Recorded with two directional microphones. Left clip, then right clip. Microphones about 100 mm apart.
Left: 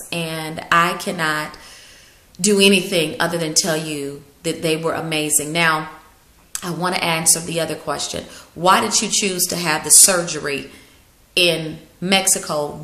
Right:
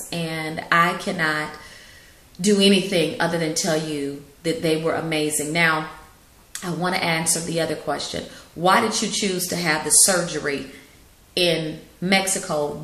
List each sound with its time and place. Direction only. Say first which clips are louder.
0.1 s a woman's voice: left 2 dB; 30° left (ahead or behind)
2.4 s speech: left 3 dB; 35° left (ahead or behind)